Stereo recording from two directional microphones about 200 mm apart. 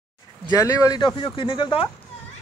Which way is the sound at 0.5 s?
15° left (ahead or behind).